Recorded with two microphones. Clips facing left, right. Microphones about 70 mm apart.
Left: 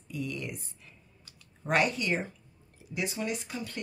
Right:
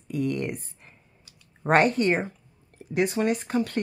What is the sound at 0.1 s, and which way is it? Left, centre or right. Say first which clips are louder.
Speech: right 9 dB; right.